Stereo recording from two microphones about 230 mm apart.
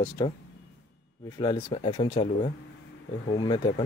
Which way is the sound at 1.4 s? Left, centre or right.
Left.